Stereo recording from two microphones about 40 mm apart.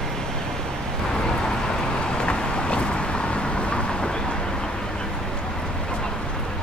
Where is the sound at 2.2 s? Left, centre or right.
Left.